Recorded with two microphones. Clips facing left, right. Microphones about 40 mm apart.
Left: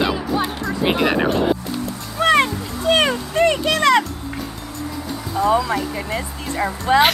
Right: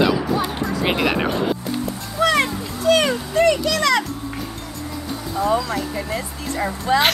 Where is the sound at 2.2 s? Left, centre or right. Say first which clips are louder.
Left 2 dB; left.